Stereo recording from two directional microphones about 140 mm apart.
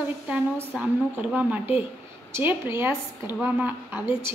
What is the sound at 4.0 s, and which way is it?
Speech, 35° left (ahead or behind).